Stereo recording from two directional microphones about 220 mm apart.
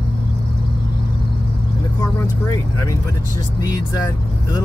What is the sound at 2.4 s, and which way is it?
Vehicle, 15° left (ahead or behind).